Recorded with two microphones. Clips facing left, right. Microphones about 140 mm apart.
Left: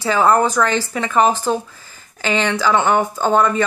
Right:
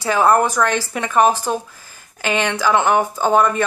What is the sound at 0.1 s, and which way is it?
Speech, 10° right (ahead or behind).